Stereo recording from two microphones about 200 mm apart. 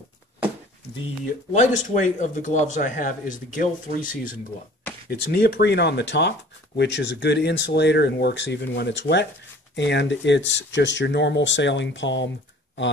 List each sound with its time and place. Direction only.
1.5 s a man's voice: 35° left (ahead or behind); by 12.3 s 65° left (ahead or behind)